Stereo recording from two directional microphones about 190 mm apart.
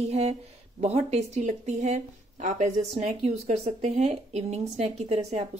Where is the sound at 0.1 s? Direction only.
35° right (ahead or behind).